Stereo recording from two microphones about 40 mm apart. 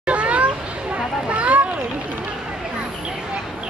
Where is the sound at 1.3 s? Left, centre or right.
Right.